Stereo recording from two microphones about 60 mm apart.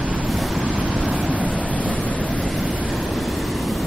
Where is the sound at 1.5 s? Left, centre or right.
Left.